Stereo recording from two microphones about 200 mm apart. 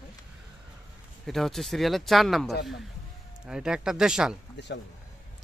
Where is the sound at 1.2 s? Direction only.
Centre (ahead or behind).